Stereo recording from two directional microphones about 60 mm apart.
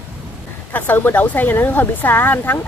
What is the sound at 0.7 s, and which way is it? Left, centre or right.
Speech, left.